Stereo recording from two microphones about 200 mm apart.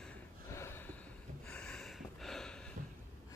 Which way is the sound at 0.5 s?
10° left (ahead or behind).